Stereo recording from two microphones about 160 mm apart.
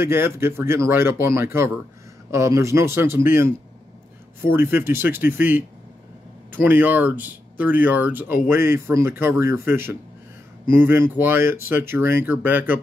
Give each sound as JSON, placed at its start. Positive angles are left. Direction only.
{"t": 0.0, "sound": "speech", "side_deg": -15}